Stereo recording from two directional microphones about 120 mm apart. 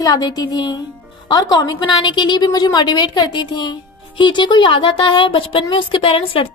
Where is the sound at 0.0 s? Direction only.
30° left (ahead or behind).